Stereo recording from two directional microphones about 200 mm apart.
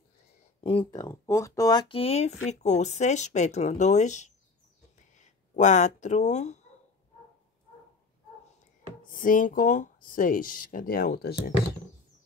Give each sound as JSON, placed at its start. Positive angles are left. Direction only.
{"t": 0.9, "sound": "speech", "side_deg": 15}
{"t": 9.1, "sound": "speech", "side_deg": 45}